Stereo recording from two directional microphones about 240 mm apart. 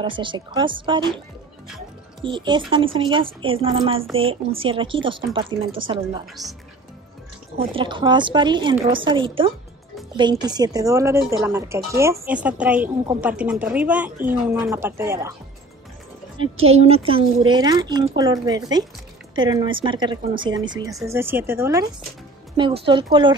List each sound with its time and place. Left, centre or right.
0.0 s a woman's voice: centre
2.2 s a woman's voice: centre
7.5 s a woman's voice: right
16.3 s a woman's voice: right